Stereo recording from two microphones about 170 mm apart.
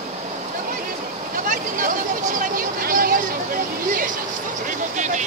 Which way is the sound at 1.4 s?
50° right (ahead or behind).